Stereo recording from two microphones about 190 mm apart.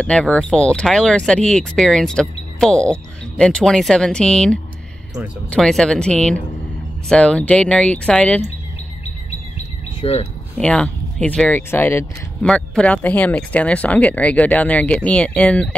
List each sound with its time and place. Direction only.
0.0 s speech: 5° left (ahead or behind)
10.0 s speech: 30° left (ahead or behind)
10.6 s speech: 5° left (ahead or behind)